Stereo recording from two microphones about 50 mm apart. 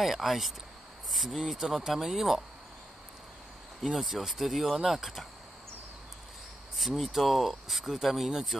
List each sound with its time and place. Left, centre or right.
0.0 s speech: centre
3.8 s speech: centre
7.1 s speech: centre